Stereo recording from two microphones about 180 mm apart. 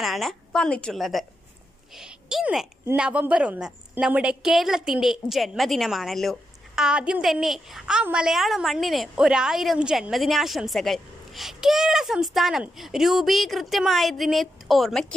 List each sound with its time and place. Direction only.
0.0 s a woman's voice: centre (ahead or behind)
2.0 s a sound: 5° right (ahead or behind)
2.9 s a woman's voice: 5° right (ahead or behind)